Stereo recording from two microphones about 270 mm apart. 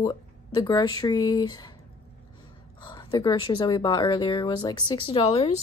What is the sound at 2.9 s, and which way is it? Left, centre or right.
A woman's voice, centre.